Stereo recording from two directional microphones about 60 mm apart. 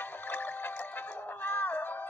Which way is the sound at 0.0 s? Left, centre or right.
Left.